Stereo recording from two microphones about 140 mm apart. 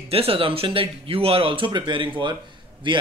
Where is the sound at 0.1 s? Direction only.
40° right (ahead or behind).